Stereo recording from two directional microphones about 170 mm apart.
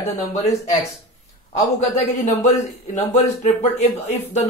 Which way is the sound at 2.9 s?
40° left (ahead or behind).